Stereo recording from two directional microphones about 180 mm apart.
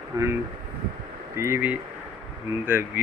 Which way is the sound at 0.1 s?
15° right (ahead or behind).